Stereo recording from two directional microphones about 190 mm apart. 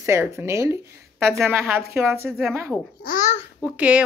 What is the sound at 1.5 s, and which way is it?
Speech, 10° right (ahead or behind).